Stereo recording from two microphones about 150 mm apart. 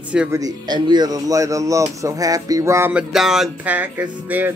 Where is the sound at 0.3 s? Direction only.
25° right (ahead or behind).